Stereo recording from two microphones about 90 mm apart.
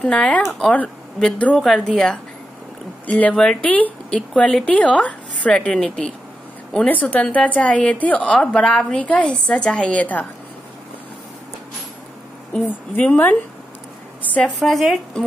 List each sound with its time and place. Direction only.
0.0 s a woman's voice: 10° left (ahead or behind)
0.4 s speech: centre (ahead or behind)
1.2 s a woman's voice: 15° left (ahead or behind)
3.1 s a woman's voice: 15° left (ahead or behind)
12.5 s a woman's voice: 15° left (ahead or behind)
14.6 s speech: centre (ahead or behind)